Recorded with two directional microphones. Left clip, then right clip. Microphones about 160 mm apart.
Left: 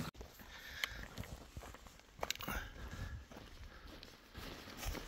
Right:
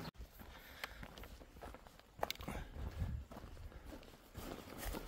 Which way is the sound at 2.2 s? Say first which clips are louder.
Left 1 dB; centre (ahead or behind).